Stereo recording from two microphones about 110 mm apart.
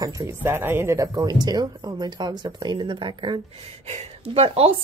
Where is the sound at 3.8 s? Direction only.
75° right (ahead or behind).